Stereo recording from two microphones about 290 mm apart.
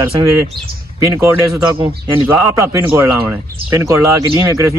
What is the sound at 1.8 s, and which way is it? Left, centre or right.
Speech, centre.